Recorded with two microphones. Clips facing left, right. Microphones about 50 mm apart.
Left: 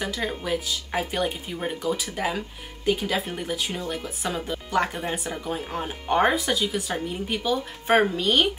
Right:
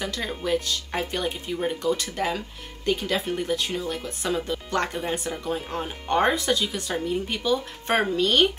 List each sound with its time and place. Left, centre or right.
0.0 s speech: centre